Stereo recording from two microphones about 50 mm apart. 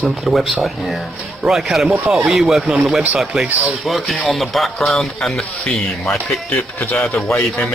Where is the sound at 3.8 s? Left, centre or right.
Centre.